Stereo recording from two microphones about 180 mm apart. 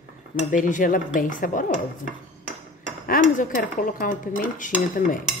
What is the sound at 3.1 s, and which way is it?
Cutlery, 50° left (ahead or behind).